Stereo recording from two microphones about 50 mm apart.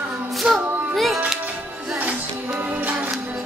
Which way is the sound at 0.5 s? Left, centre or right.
Centre.